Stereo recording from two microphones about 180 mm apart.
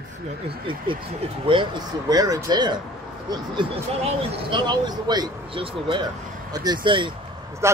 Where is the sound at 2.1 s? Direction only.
20° right (ahead or behind).